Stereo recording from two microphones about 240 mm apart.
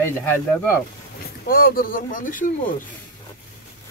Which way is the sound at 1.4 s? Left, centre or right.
Left.